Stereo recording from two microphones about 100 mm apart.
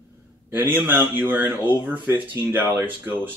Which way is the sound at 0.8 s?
20° right (ahead or behind).